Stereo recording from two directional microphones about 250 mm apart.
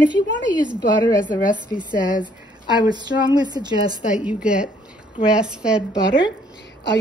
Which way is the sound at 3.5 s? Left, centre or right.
Centre.